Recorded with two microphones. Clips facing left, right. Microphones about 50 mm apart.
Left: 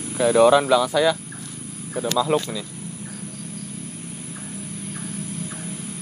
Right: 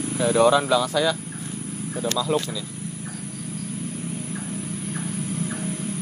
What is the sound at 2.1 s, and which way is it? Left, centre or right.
Speech, left.